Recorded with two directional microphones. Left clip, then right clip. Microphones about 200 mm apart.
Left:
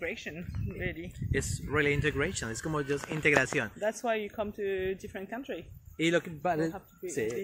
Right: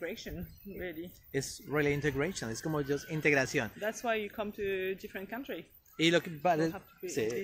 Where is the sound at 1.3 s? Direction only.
10° right (ahead or behind).